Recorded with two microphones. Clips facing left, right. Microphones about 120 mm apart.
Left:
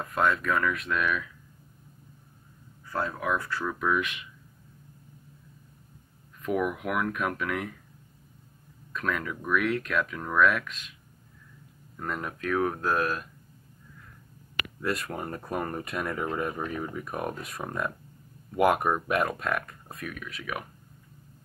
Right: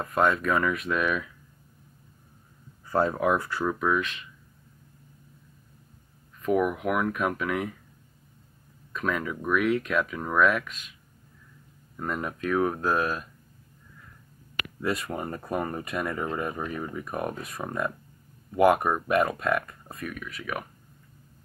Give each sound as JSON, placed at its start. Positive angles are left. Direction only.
{"t": 0.0, "sound": "speech", "side_deg": -5}
{"t": 2.9, "sound": "speech", "side_deg": -30}
{"t": 3.8, "sound": "speech", "side_deg": 5}
{"t": 6.4, "sound": "speech", "side_deg": 0}
{"t": 8.9, "sound": "speech", "side_deg": -5}
{"t": 12.0, "sound": "speech", "side_deg": -5}
{"t": 14.8, "sound": "speech", "side_deg": -5}